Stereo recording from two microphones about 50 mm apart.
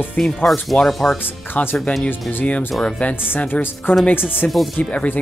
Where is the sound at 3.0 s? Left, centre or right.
Left.